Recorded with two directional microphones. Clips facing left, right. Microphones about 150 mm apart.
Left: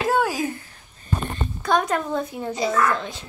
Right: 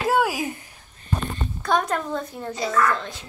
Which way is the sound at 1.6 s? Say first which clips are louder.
Left 1 dB; centre (ahead or behind).